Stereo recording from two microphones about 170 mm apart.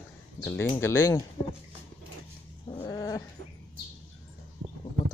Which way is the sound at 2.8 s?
20° left (ahead or behind).